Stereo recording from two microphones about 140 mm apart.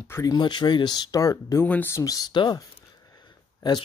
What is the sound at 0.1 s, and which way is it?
Speech, 25° left (ahead or behind).